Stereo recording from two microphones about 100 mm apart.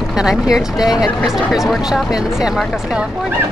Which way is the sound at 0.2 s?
5° right (ahead or behind).